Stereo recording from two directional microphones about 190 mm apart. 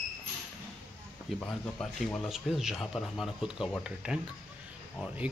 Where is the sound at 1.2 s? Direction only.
5° left (ahead or behind).